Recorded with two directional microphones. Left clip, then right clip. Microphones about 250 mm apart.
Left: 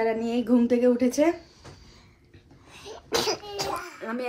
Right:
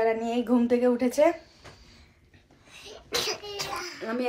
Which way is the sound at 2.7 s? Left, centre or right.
Left.